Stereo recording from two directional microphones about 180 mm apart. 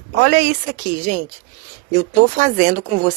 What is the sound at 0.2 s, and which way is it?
Speech, 60° right (ahead or behind).